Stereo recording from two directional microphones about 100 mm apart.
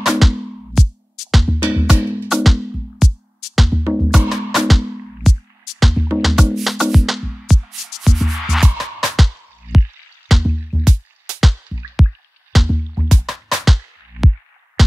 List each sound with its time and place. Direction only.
0.0 s music: centre (ahead or behind)
1.7 s music: 10° right (ahead or behind)
12.0 s music: 35° left (ahead or behind)
12.5 s music: centre (ahead or behind)